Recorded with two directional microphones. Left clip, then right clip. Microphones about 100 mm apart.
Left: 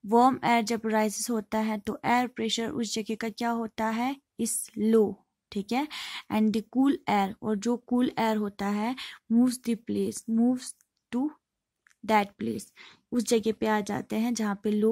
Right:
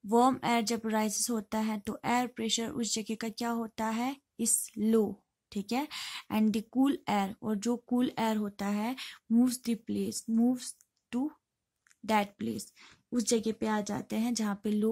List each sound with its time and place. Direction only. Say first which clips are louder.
0.0 s a woman's voice: left 4 dB; 35° left (ahead or behind)